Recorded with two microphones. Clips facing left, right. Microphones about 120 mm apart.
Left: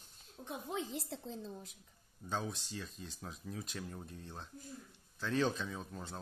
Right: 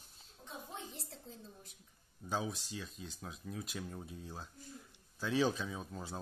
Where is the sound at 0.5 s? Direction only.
85° left.